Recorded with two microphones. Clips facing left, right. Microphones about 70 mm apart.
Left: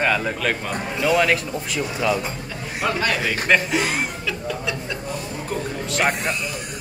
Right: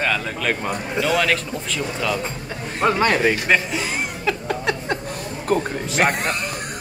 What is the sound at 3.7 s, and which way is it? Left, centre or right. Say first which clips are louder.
Speech: left 3 dB; left.